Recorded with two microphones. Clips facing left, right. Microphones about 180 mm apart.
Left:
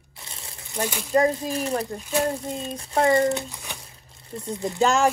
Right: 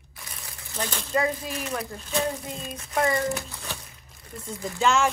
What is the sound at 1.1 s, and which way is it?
Speech, 35° left (ahead or behind).